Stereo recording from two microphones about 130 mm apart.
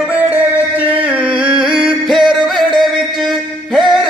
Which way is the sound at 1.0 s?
10° right (ahead or behind).